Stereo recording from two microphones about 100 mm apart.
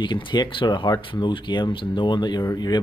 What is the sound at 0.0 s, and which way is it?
Speech, 50° left (ahead or behind).